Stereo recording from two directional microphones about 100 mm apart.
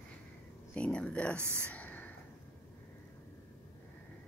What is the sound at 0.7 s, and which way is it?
Speech, 10° left (ahead or behind).